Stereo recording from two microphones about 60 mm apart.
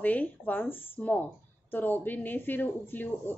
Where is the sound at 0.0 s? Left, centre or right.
Left.